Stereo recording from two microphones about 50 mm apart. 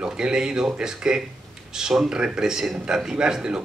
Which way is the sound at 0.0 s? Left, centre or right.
Centre.